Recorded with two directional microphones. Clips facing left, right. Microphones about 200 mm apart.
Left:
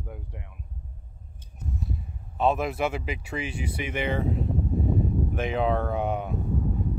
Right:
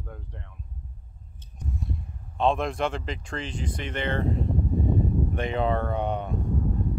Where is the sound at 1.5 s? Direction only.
Centre (ahead or behind).